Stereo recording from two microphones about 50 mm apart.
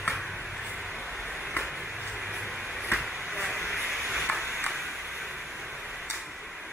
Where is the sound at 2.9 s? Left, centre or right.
Centre.